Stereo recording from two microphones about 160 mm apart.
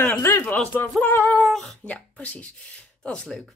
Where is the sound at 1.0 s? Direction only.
15° left (ahead or behind).